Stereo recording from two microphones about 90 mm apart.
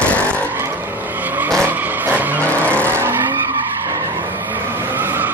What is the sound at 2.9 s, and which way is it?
Vehicle, 25° right (ahead or behind).